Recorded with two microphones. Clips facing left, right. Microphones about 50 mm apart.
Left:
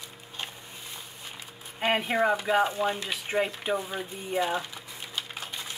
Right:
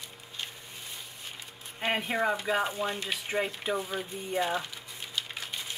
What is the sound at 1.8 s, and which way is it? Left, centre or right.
Speech, left.